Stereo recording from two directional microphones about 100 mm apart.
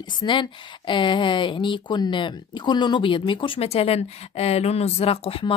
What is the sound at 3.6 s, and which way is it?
Speech, 85° left.